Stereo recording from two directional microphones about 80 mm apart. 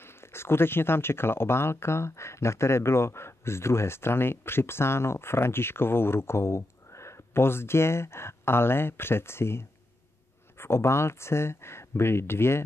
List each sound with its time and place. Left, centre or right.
0.0 s speech: left